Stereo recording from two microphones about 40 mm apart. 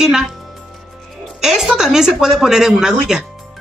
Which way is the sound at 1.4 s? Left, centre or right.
Centre.